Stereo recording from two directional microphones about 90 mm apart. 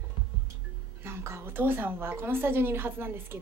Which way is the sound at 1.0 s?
30° right (ahead or behind).